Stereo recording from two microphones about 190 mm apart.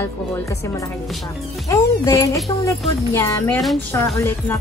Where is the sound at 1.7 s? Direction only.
15° left (ahead or behind).